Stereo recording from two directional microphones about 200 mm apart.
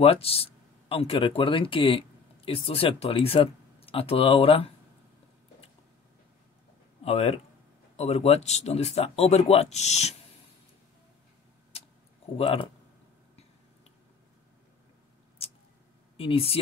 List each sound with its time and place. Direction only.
0.0 s speech: 30° left (ahead or behind)
7.1 s speech: 30° left (ahead or behind)
12.4 s speech: 25° left (ahead or behind)
16.2 s speech: 30° left (ahead or behind)